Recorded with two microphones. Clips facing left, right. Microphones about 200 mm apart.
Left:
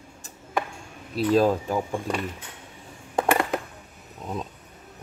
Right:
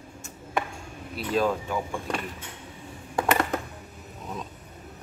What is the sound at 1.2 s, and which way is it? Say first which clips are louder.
Speech: left 5 dB; 35° left (ahead or behind).